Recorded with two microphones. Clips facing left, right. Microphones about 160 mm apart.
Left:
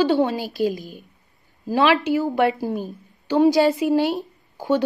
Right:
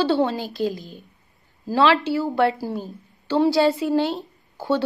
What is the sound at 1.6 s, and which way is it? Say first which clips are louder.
A woman's voice: even; 15° left (ahead or behind).